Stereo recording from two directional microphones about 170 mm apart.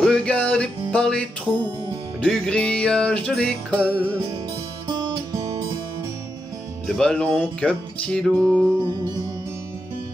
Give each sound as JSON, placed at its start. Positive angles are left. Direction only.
{"t": 0.0, "sound": "music", "side_deg": 5}
{"t": 2.2, "sound": "music", "side_deg": 5}
{"t": 4.8, "sound": "music", "side_deg": -25}
{"t": 6.9, "sound": "music", "side_deg": 5}